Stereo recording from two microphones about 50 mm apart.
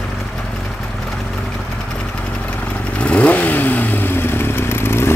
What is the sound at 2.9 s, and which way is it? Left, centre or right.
Vehicle, left.